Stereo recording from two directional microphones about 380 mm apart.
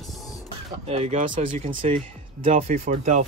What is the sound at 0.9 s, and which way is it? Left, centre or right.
Speech, centre.